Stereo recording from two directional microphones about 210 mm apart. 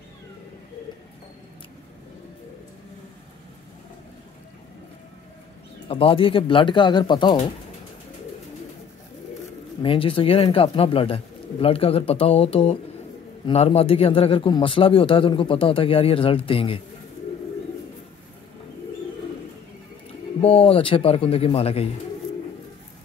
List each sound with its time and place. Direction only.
5.9 s a man's voice: 25° left (ahead or behind)
9.8 s a man's voice: 25° left (ahead or behind)
20.4 s a man's voice: 25° left (ahead or behind)